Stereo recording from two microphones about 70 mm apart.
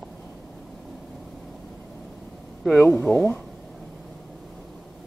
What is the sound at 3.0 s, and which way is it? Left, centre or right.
Speech, left.